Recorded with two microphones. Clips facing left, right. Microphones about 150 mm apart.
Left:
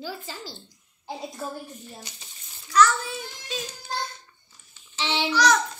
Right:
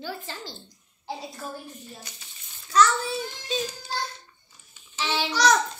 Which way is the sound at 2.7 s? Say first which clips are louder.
Even; 30° right (ahead or behind).